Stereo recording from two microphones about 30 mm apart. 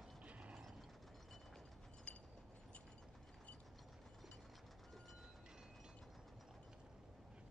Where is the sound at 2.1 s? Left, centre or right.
Left.